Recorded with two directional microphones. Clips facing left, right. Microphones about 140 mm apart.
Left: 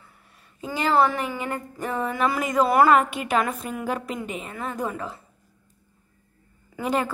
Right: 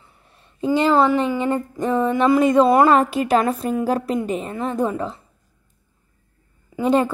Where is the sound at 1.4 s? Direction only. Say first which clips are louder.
Right 8 dB; 25° right (ahead or behind).